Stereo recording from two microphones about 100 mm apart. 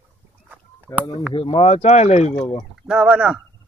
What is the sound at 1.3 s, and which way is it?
Speech, 80° left.